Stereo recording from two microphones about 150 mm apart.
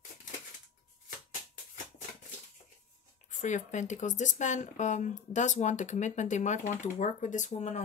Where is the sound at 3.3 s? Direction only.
55° left (ahead or behind).